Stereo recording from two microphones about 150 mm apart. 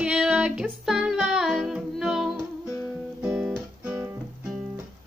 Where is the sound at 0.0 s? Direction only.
5° right (ahead or behind).